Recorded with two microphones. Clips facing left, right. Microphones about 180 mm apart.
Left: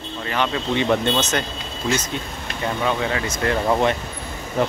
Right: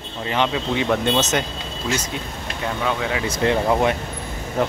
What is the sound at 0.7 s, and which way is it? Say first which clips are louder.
Speech: left 1 dB; 5° right (ahead or behind).